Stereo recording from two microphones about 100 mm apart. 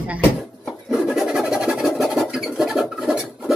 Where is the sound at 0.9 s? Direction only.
5° right (ahead or behind).